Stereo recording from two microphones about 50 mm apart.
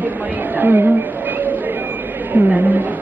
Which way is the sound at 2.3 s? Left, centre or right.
Right.